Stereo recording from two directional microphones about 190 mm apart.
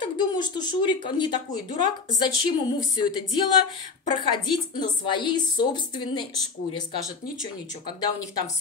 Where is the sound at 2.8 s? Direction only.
20° left (ahead or behind).